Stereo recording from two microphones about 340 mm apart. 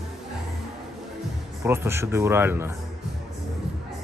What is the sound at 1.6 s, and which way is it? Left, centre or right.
Speech, centre.